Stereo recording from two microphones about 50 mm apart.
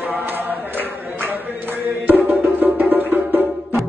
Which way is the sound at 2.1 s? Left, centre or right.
Right.